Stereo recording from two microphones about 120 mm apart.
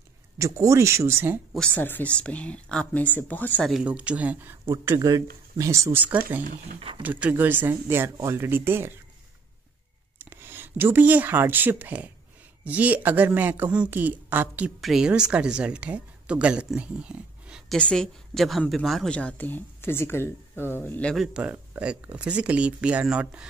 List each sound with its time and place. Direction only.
0.4 s speech: 25° right (ahead or behind)
1.5 s a woman's voice: 5° left (ahead or behind)
3.8 s speech: 10° right (ahead or behind)
10.1 s speech: 20° right (ahead or behind)
14.8 s speech: 5° right (ahead or behind)
17.7 s a woman's voice: 5° left (ahead or behind)
21.1 s speech: 5° right (ahead or behind)